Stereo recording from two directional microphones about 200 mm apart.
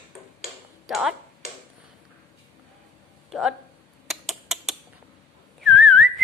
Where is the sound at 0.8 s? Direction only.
Centre (ahead or behind).